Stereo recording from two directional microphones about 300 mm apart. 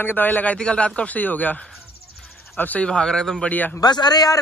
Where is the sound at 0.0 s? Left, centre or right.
Centre.